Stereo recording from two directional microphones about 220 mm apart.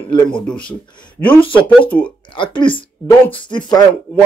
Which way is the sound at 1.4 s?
25° left (ahead or behind).